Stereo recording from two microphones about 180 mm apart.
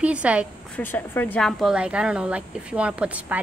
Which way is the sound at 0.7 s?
10° left (ahead or behind).